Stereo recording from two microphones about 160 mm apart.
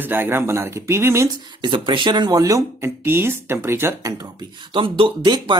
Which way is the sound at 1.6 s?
30° right (ahead or behind).